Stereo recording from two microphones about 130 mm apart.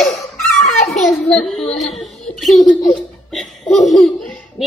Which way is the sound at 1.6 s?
60° left (ahead or behind).